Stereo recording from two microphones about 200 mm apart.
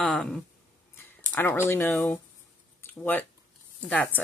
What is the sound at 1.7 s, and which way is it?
Speech, 10° left (ahead or behind).